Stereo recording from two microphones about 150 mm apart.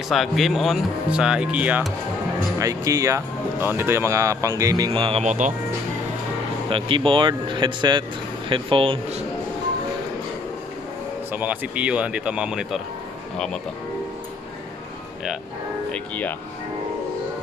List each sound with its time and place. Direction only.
0.1 s speech: centre (ahead or behind)
2.6 s speech: 20° right (ahead or behind)
5.2 s speech: 55° right (ahead or behind)
6.7 s speech: 35° right (ahead or behind)
11.3 s speech: 10° right (ahead or behind)
15.9 s speech: 10° left (ahead or behind)